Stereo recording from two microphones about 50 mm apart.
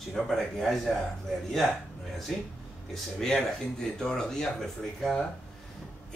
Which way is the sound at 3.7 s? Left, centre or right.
Centre.